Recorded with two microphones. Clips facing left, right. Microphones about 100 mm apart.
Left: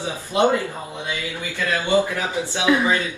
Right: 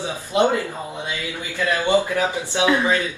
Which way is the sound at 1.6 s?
20° right (ahead or behind).